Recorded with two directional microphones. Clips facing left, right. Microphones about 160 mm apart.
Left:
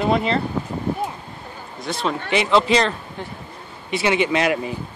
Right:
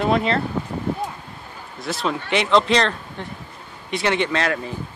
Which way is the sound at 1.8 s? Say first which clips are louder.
Even; centre (ahead or behind).